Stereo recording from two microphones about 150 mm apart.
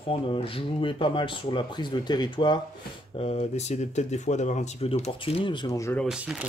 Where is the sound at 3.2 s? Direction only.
45° left (ahead or behind); by 5.9 s 20° left (ahead or behind).